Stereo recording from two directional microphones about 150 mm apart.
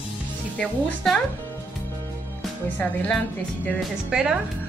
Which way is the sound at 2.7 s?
10° left (ahead or behind).